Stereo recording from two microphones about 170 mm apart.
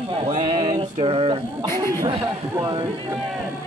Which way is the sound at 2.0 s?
25° right (ahead or behind).